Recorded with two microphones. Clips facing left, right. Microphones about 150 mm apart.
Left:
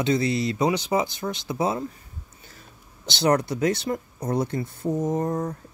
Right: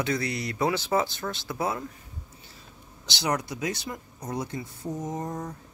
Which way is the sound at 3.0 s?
55° left (ahead or behind).